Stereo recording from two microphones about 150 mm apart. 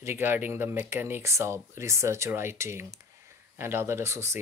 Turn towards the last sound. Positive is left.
turn(degrees=-20)  # may be behind; listen again after turning